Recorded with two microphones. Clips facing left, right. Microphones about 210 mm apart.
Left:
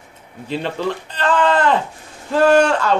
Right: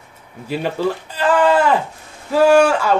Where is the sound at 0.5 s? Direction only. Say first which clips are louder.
Right 2 dB; 10° right (ahead or behind).